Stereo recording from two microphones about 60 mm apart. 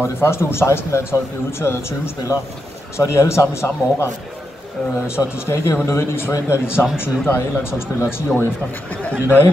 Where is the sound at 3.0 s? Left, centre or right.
Left.